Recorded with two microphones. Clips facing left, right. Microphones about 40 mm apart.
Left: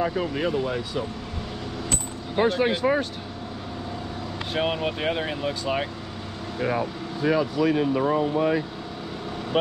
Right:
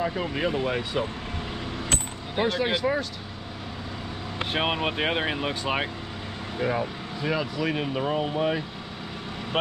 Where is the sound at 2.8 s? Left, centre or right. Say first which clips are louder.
Left 3 dB; left.